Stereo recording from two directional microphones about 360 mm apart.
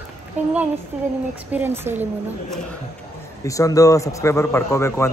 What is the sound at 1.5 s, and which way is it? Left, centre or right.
Speech, centre.